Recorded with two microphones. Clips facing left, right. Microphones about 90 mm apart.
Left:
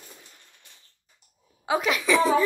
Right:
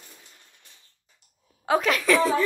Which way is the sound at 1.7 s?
10° left (ahead or behind).